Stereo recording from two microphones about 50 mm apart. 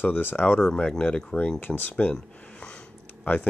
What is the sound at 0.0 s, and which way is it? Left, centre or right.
Speech, left.